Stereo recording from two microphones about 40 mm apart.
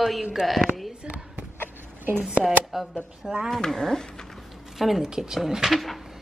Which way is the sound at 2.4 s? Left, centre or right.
Centre.